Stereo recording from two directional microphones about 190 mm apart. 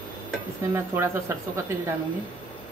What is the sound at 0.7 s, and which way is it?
Speech, 10° right (ahead or behind).